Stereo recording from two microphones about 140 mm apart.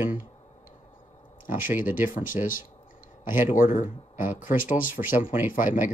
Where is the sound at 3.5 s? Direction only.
75° left (ahead or behind).